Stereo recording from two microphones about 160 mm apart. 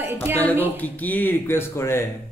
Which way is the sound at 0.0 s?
10° right (ahead or behind).